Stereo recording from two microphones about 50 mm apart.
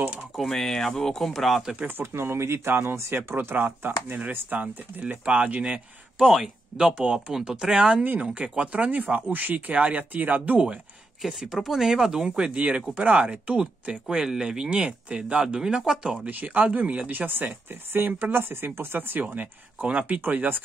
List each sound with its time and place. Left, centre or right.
0.4 s speech: centre
1.9 s speech: right
3.5 s speech: right
4.6 s speech: right
11.2 s speech: centre
14.0 s speech: centre
16.3 s speech: right
20.2 s speech: right